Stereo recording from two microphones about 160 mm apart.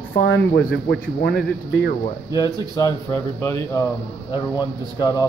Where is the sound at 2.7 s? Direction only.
20° left (ahead or behind).